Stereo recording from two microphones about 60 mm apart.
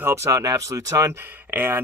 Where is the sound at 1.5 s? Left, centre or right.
Right.